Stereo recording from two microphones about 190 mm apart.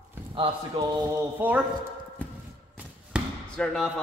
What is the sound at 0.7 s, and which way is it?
Speech, 25° right (ahead or behind).